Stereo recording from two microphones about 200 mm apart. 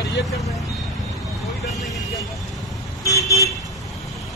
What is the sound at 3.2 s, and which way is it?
Speech, 15° left (ahead or behind).